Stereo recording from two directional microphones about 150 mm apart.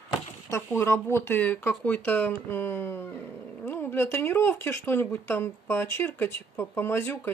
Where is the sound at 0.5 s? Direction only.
15° left (ahead or behind).